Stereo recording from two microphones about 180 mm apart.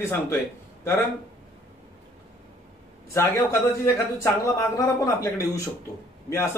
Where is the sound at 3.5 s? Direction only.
15° left (ahead or behind).